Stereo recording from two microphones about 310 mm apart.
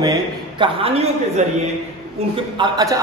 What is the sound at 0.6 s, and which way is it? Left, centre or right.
A man's voice, centre.